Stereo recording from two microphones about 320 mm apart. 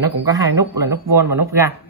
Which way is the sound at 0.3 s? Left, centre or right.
Centre.